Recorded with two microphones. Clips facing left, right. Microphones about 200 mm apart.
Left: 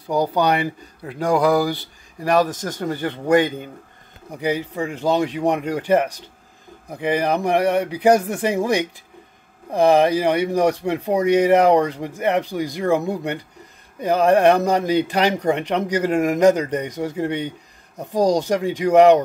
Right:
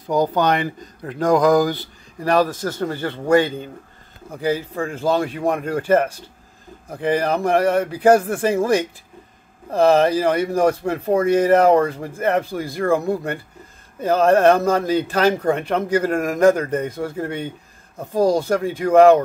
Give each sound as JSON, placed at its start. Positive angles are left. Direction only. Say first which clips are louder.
{"t": 0.0, "sound": "speech", "louder": "right 1 dB", "side_deg": 10}